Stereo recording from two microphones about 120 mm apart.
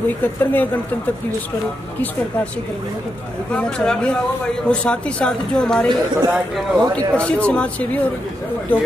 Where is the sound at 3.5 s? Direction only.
5° left (ahead or behind).